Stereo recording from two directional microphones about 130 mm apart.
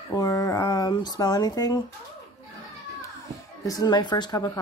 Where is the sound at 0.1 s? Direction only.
25° left (ahead or behind).